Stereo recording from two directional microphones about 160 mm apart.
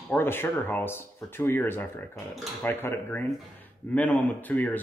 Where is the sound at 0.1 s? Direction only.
15° left (ahead or behind).